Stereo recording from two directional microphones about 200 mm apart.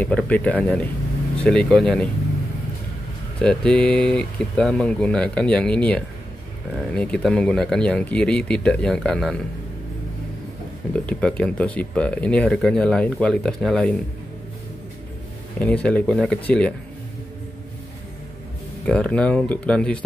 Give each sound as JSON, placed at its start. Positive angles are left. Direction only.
{"t": 0.0, "sound": "speech", "side_deg": 5}
{"t": 3.3, "sound": "speech", "side_deg": 5}
{"t": 10.9, "sound": "speech", "side_deg": 5}
{"t": 15.6, "sound": "speech", "side_deg": 5}
{"t": 18.9, "sound": "speech", "side_deg": 5}